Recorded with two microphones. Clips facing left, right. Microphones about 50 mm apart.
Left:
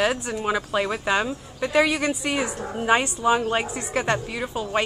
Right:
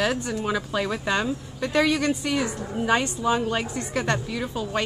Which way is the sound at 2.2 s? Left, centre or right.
Left.